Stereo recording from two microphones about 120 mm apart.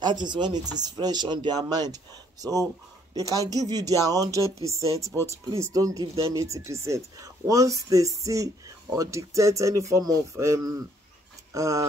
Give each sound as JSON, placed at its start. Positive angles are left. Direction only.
{"t": 0.0, "sound": "speech", "side_deg": -40}